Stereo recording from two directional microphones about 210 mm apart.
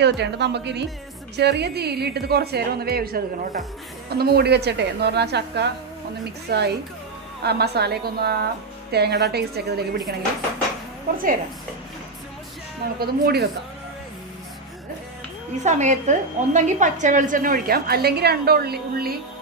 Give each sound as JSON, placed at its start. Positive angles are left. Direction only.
{"t": 0.0, "sound": "a woman's voice", "side_deg": -55}
{"t": 13.0, "sound": "a woman's voice", "side_deg": -50}
{"t": 15.6, "sound": "a woman's voice", "side_deg": -35}